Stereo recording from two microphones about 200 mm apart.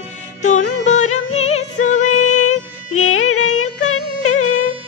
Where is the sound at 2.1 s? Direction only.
90° left.